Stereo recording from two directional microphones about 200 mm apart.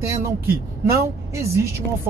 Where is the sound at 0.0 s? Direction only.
15° right (ahead or behind).